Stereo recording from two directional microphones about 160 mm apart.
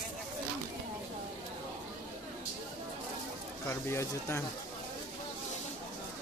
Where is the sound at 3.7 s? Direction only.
15° left (ahead or behind).